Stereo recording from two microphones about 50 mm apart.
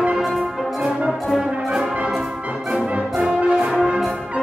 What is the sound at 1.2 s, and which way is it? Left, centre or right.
Brass instrument, centre.